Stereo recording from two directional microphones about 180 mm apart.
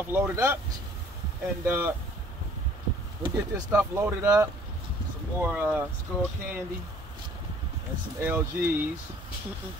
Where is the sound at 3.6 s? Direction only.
10° right (ahead or behind).